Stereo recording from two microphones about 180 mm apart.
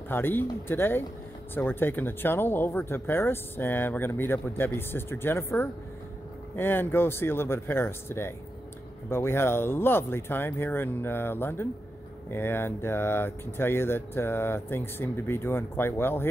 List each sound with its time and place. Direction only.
0.1 s speech: 10° left (ahead or behind)